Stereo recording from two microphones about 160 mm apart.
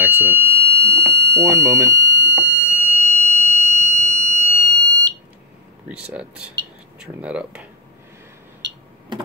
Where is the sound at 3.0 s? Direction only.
45° right (ahead or behind).